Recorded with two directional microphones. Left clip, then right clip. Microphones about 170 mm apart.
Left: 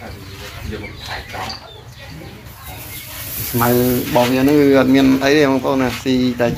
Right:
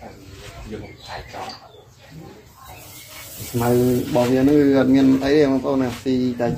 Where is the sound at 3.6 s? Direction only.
20° left (ahead or behind).